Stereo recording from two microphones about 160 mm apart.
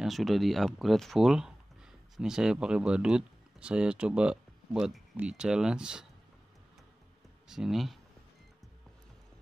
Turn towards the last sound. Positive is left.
turn(degrees=0)  # may be behind; listen again after turning